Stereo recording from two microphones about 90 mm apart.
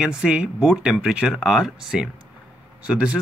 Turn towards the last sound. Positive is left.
turn(degrees=-10)  # may be behind; listen again after turning